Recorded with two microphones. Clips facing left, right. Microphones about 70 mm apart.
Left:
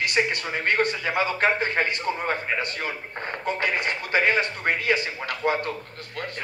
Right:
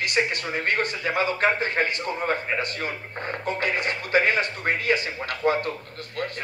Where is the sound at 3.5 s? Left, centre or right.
Left.